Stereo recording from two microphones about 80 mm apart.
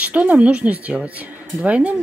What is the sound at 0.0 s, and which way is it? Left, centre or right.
Speech, centre.